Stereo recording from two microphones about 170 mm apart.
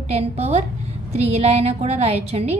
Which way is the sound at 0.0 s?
40° right (ahead or behind).